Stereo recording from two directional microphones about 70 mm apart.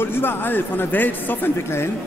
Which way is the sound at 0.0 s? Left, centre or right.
Left.